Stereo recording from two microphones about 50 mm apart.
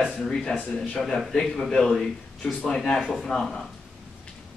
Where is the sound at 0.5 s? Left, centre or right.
Left.